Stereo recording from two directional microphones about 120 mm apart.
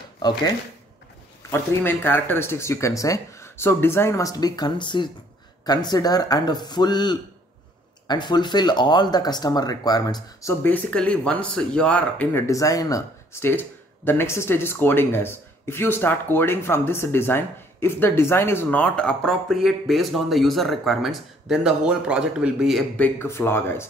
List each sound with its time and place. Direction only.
1.5 s speech: 20° left (ahead or behind)
12.4 s speech: 25° left (ahead or behind); by 22.8 s 5° right (ahead or behind)
22.9 s speech: 15° left (ahead or behind)